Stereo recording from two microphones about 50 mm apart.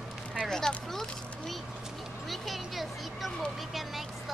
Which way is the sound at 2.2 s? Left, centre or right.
Centre.